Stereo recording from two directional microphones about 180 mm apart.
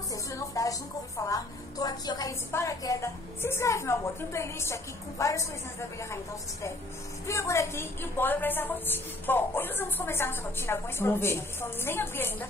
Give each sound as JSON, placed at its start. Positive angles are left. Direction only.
{"t": 0.1, "sound": "a woman's voice", "side_deg": 20}
{"t": 7.2, "sound": "a woman's voice", "side_deg": 15}